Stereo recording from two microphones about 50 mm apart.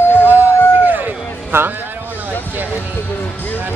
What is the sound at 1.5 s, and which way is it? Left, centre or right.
Speech, right.